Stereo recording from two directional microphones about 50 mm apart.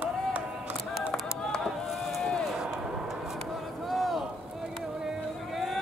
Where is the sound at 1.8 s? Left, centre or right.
Centre.